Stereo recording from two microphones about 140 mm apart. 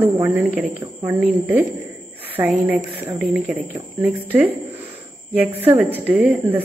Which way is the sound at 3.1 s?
5° right (ahead or behind).